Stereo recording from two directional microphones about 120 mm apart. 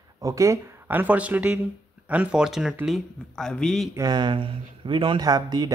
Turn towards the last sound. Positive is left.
turn(degrees=-35)  # may be behind; listen again after turning